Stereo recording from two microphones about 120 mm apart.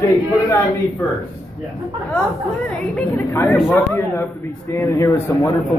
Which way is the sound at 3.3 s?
20° left (ahead or behind).